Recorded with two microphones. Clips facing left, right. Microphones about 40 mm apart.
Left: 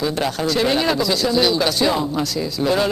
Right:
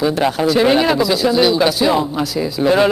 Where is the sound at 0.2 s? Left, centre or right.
Centre.